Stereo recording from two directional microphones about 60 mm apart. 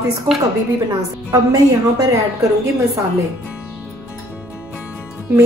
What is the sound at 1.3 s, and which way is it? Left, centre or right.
Speech, right.